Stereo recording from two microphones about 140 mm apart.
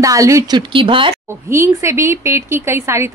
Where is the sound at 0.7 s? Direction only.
35° right (ahead or behind).